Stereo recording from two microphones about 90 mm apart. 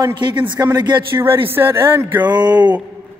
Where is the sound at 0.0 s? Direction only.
60° right (ahead or behind).